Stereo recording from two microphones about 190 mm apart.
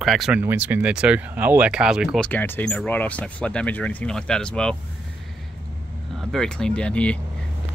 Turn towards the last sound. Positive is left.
turn(degrees=5)  # may be behind; listen again after turning